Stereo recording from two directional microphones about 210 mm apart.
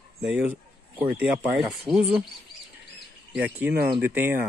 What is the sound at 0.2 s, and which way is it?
Speech, 5° right (ahead or behind).